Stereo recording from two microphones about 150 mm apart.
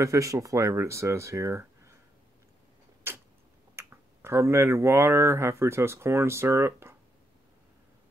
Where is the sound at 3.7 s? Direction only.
15° right (ahead or behind).